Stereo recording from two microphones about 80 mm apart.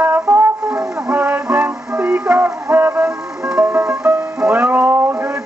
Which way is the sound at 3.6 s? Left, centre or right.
Right.